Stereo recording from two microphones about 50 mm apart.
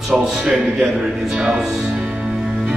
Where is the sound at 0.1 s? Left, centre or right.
Centre.